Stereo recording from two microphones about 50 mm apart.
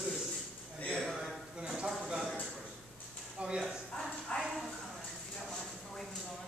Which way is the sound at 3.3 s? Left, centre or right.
Centre.